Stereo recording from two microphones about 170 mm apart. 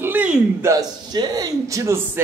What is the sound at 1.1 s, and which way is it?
Speech, 20° right (ahead or behind).